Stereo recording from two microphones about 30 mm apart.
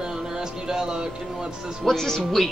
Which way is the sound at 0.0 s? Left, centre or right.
Right.